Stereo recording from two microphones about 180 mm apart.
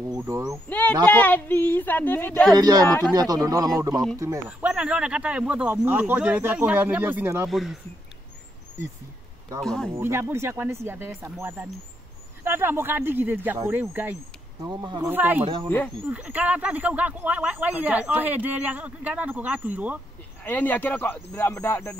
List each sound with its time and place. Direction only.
0.2 s speech: 15° right (ahead or behind)
0.7 s speech: 10° left (ahead or behind)
2.5 s speech: 20° right (ahead or behind); by 7.8 s centre (ahead or behind)
9.6 s speech: 5° left (ahead or behind)
9.9 s speech: 15° right (ahead or behind)
14.6 s speech: 20° right (ahead or behind)
15.4 s speech: 25° right (ahead or behind)
16.1 s speech: 10° right (ahead or behind)
20.4 s speech: 10° left (ahead or behind)